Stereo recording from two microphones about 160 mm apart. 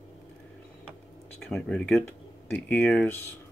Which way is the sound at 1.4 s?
Centre (ahead or behind).